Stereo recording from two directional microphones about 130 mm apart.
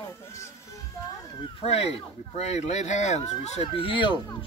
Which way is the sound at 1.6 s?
50° left (ahead or behind).